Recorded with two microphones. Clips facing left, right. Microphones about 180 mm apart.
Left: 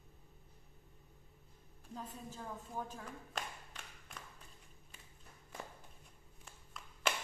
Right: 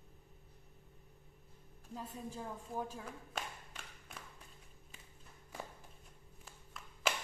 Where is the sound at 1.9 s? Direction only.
10° right (ahead or behind).